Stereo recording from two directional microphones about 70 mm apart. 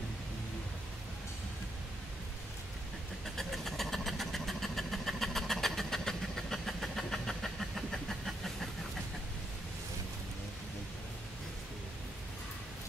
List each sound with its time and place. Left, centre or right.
3.3 s vehicle: centre